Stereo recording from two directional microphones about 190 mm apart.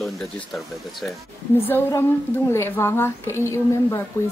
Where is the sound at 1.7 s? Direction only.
10° left (ahead or behind).